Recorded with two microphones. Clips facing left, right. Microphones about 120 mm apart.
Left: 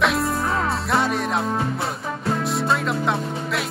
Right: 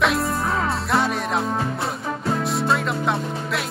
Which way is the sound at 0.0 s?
Centre (ahead or behind).